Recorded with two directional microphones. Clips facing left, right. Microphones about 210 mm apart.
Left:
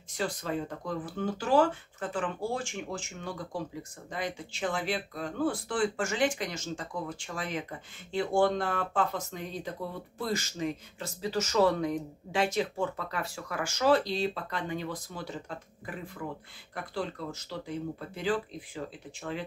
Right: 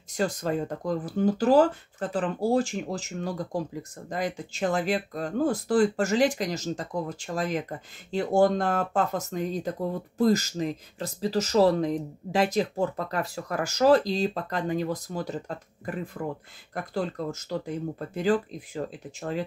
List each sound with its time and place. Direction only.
0.2 s speech: 45° right (ahead or behind)